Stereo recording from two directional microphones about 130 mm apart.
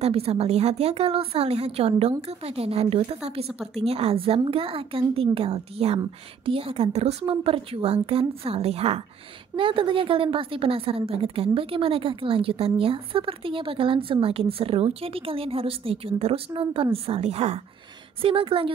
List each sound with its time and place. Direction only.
0.0 s a woman's voice: 50° right (ahead or behind)
9.6 s a woman's voice: 40° right (ahead or behind)